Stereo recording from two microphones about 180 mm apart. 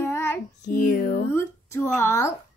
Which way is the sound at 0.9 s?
60° left (ahead or behind).